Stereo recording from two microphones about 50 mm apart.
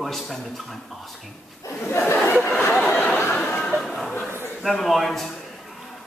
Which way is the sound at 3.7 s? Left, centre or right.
Centre.